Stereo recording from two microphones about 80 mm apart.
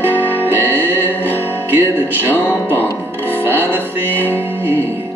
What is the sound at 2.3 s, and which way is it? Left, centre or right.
Music, left.